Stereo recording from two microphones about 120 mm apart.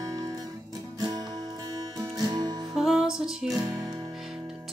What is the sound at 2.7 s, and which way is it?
Music, 5° right (ahead or behind).